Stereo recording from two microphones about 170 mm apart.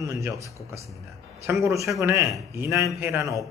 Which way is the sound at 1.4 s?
15° right (ahead or behind).